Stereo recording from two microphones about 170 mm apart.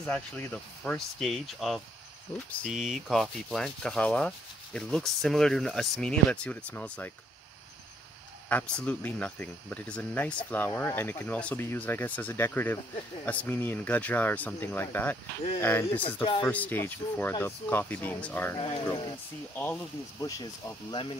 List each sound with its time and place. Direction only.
0.0 s speech: 10° left (ahead or behind)
8.5 s speech: 5° left (ahead or behind)
16.2 s speech: 25° left (ahead or behind)
16.4 s speech: 10° left (ahead or behind)
19.5 s speech: 10° left (ahead or behind)